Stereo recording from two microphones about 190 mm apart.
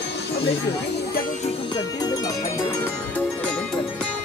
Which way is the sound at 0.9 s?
50° left (ahead or behind).